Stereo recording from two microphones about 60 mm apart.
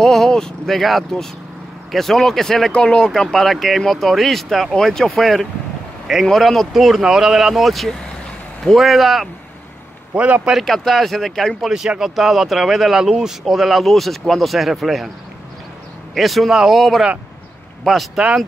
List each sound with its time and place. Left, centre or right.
0.0 s speech: centre
10.1 s a man's voice: right
10.6 s speech: centre
16.2 s speech: centre